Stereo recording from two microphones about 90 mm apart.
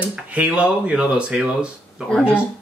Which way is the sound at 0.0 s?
15° right (ahead or behind).